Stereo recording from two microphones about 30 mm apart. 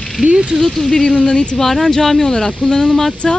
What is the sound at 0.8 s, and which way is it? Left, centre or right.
Speech, centre.